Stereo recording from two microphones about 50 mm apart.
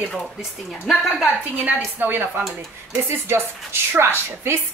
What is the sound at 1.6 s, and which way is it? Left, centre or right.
A woman's voice, right.